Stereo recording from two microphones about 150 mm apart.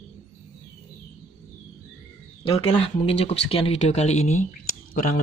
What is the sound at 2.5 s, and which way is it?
Speech, 40° left (ahead or behind).